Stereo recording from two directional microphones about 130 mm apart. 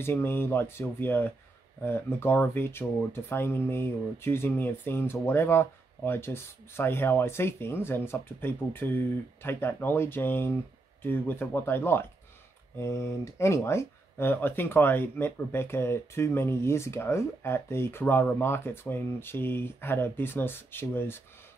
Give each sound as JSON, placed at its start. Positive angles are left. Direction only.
{"t": 0.0, "sound": "speech", "side_deg": 20}